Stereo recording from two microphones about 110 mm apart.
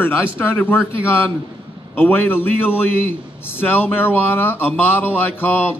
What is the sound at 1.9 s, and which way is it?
A man's voice, 20° left (ahead or behind).